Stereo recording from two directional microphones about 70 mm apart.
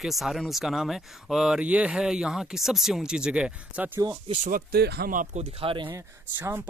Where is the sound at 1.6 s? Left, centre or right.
Centre.